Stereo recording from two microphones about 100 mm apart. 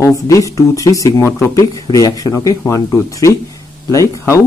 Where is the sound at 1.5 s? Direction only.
35° left (ahead or behind).